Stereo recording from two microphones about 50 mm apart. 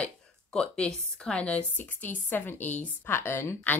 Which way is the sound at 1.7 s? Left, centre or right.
Left.